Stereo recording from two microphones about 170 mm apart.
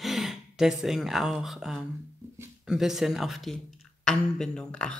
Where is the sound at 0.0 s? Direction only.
Centre (ahead or behind).